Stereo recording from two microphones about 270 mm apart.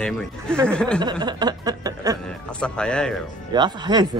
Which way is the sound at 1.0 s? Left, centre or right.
Centre.